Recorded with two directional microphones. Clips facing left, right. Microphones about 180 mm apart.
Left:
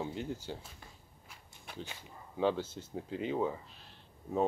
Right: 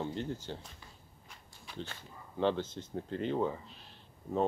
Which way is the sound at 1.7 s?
5° left (ahead or behind).